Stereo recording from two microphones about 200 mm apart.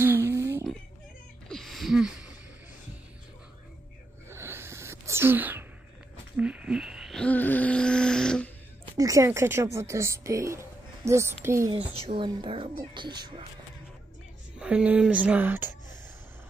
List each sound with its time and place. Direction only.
0.0 s music: 10° right (ahead or behind)
1.5 s a sound: centre (ahead or behind)
4.3 s a sound: 10° right (ahead or behind); by 8.5 s 5° left (ahead or behind)
8.9 s speech: 15° right (ahead or behind)
12.1 s a woman's voice: 25° right (ahead or behind)
14.6 s speech: 5° right (ahead or behind)